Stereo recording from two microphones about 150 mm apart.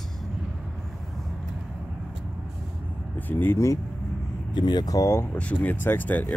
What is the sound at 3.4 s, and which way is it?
Speech, 15° left (ahead or behind).